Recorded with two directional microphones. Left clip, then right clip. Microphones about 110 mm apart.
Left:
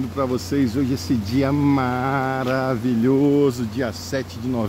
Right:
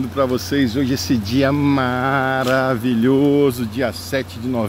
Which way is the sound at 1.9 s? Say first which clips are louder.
Right 4 dB; 25° right (ahead or behind).